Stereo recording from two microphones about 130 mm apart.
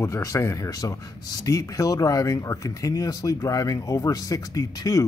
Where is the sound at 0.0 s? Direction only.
25° left (ahead or behind).